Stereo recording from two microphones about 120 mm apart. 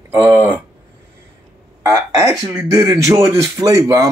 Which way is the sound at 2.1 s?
30° right (ahead or behind).